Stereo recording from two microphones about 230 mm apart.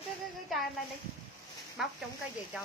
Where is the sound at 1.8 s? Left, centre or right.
Centre.